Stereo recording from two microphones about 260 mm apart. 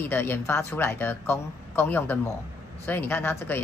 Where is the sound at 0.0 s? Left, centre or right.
Centre.